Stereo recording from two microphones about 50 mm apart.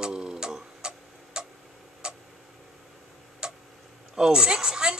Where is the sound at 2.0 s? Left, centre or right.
Centre.